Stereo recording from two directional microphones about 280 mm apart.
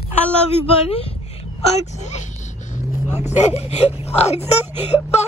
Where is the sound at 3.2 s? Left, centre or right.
Left.